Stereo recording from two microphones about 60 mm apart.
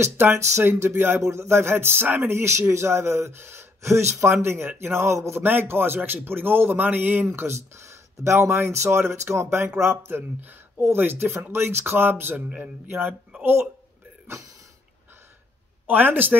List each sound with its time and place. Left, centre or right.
0.2 s speech: right
5.4 s speech: right
7.2 s speech: right
15.9 s speech: right